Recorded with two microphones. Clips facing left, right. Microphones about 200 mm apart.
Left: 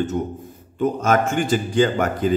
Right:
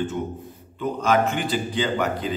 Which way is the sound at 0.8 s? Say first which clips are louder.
Left 2 dB; 45° left (ahead or behind).